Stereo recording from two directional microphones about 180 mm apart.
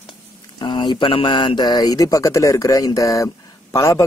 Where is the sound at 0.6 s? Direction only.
25° left (ahead or behind).